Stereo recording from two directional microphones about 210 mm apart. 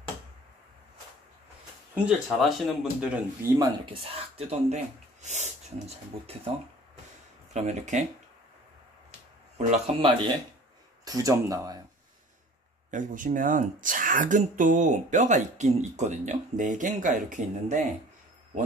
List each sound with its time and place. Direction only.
2.0 s speech: centre (ahead or behind)
3.5 s speech: 25° right (ahead or behind)
7.5 s speech: 35° right (ahead or behind)
9.7 s speech: 25° right (ahead or behind)
12.9 s speech: 40° right (ahead or behind)